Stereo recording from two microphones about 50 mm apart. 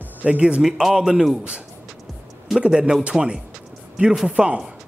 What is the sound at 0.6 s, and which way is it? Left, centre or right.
Speech, centre.